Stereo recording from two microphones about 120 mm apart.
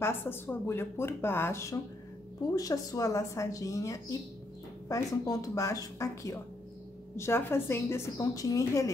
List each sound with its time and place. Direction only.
0.0 s speech: 20° left (ahead or behind)